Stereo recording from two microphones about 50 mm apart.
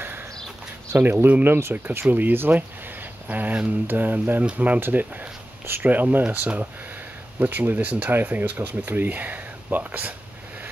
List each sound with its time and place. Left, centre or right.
1.0 s speech: right
1.9 s speech: right
4.7 s speech: right
5.8 s speech: right